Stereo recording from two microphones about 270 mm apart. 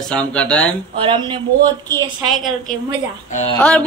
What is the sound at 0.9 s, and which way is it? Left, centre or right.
Speech, centre.